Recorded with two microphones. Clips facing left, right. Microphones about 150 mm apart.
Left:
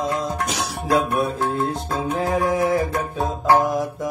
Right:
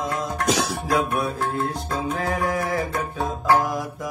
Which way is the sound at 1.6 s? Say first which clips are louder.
Left 2 dB; 20° left (ahead or behind).